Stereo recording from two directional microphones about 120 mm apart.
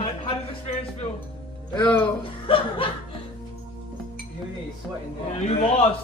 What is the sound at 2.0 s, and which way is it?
Speech, 45° left (ahead or behind).